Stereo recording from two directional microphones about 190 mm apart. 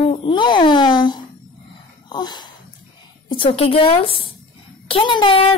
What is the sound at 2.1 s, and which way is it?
A child's voice, 20° left (ahead or behind).